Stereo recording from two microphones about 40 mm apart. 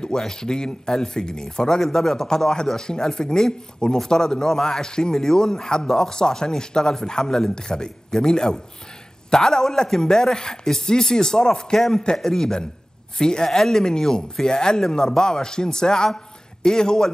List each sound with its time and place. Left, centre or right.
0.0 s a man's voice: centre